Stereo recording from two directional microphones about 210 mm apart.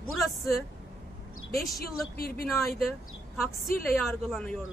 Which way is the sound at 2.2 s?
45° left (ahead or behind).